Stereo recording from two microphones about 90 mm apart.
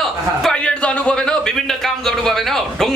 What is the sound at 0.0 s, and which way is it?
A man's voice, 5° left (ahead or behind).